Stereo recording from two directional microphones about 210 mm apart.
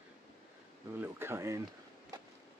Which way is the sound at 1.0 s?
10° right (ahead or behind).